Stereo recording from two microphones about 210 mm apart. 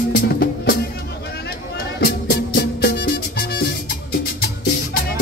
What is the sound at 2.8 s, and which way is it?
Music, 50° left (ahead or behind).